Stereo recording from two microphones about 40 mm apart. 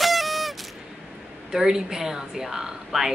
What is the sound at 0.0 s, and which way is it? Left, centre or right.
Honk, centre.